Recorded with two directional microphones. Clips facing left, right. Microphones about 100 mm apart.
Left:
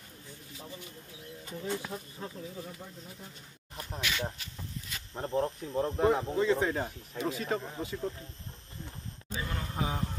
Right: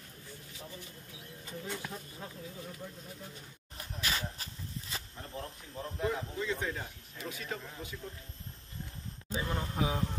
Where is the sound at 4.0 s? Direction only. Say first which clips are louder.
Left 2 dB; 35° right (ahead or behind).